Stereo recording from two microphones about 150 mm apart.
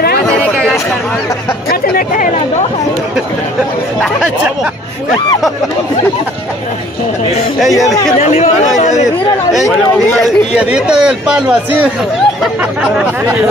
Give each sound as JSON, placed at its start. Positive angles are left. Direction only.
{"t": 0.3, "sound": "chatter", "side_deg": 5}
{"t": 1.7, "sound": "chatter", "side_deg": 70}
{"t": 7.7, "sound": "speech", "side_deg": 25}
{"t": 8.2, "sound": "speech", "side_deg": 55}
{"t": 10.2, "sound": "speech", "side_deg": -5}
{"t": 12.9, "sound": "speech", "side_deg": -10}